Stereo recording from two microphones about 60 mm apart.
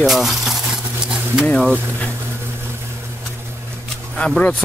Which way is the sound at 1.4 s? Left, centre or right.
Centre.